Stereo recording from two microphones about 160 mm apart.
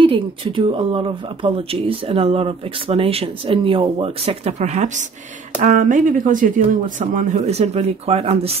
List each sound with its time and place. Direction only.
0.0 s speech: 35° right (ahead or behind)